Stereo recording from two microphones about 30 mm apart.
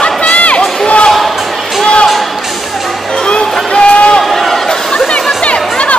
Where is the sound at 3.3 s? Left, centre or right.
Left.